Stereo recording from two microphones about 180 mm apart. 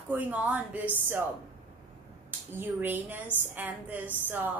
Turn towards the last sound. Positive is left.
turn(degrees=-10)  # may be behind; listen again after turning